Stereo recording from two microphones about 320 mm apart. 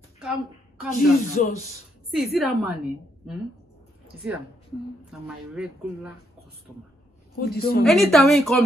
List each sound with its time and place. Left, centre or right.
0.2 s a woman's voice: centre
1.3 s speech: left
2.1 s speech: centre
5.2 s speech: centre
7.3 s speech: left
7.8 s speech: centre